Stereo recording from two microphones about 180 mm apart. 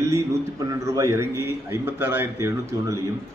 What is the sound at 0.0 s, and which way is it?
A man's voice, 15° right (ahead or behind).